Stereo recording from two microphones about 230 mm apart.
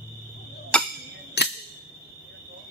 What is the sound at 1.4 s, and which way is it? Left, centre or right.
Music, left.